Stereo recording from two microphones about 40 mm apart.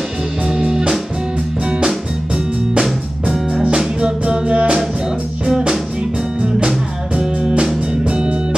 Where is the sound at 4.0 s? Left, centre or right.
Right.